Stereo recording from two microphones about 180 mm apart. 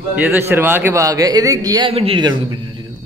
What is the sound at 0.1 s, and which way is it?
A man's voice, 10° right (ahead or behind).